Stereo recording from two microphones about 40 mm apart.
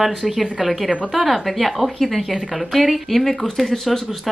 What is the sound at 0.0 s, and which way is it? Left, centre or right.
Speech, centre.